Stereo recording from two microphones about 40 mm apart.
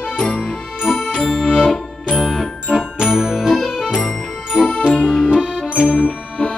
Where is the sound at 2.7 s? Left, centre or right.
Centre.